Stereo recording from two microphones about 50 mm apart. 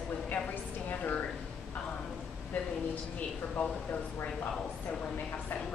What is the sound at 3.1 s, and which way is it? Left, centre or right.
Speech, left.